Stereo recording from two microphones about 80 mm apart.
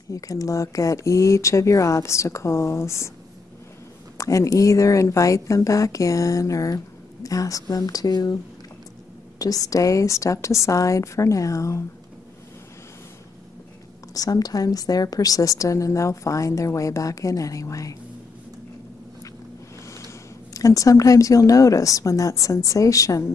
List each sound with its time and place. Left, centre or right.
0.1 s speech: left
4.2 s a woman's voice: left
9.4 s speech: left
14.1 s a woman's voice: left
20.5 s a woman's voice: left